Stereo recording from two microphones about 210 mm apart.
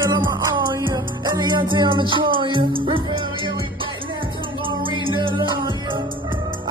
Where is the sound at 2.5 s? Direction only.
25° right (ahead or behind).